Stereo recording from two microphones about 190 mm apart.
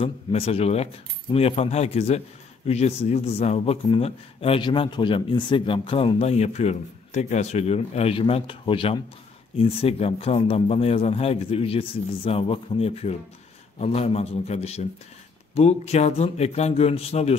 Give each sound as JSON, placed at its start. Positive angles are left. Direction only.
{"t": 0.0, "sound": "a man's voice", "side_deg": 30}